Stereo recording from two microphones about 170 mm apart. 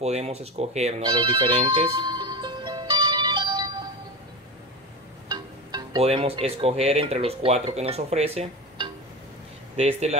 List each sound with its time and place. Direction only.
0.0 s telephone bell ringing: 40° right (ahead or behind)
5.3 s speech: 30° right (ahead or behind)